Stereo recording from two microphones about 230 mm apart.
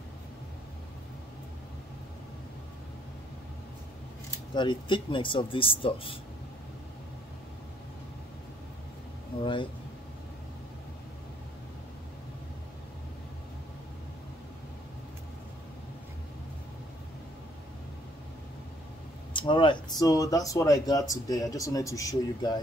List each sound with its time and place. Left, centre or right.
4.6 s speech: left
9.4 s speech: left
19.3 s speech: left